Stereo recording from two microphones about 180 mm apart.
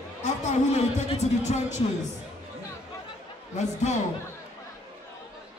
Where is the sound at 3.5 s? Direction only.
40° left (ahead or behind).